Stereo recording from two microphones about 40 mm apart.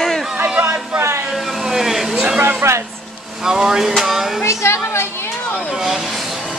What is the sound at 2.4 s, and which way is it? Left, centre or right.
Speech, right.